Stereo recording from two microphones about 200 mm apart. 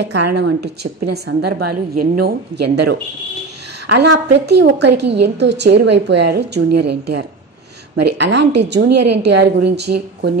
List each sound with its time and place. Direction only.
0.0 s a woman's voice: 60° right (ahead or behind)
4.1 s a woman's voice: 55° right (ahead or behind)